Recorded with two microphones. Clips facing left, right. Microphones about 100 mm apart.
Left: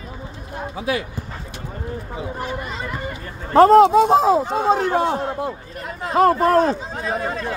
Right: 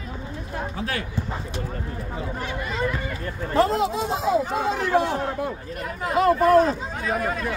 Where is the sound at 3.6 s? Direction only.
55° left (ahead or behind); by 5.0 s 40° left (ahead or behind).